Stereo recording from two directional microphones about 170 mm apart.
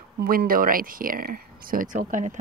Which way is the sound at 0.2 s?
60° right (ahead or behind).